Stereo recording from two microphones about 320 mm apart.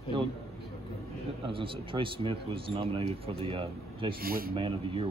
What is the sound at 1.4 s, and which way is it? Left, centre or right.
Speech, centre.